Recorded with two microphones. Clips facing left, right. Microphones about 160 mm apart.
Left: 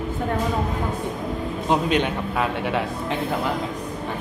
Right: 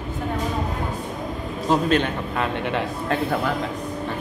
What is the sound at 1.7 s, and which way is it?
A man's voice, 15° left (ahead or behind).